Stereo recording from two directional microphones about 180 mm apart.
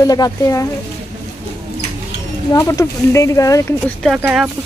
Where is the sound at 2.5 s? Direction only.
20° left (ahead or behind).